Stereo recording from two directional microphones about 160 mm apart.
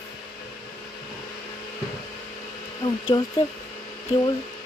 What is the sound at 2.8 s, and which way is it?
Speech, 30° left (ahead or behind).